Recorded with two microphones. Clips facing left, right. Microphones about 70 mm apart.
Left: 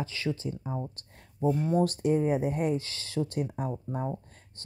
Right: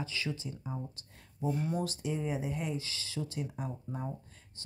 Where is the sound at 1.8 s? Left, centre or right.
Left.